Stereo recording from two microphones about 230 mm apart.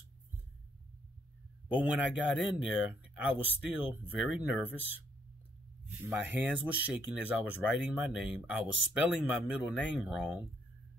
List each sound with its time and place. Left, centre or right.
1.7 s speech: centre
6.0 s speech: centre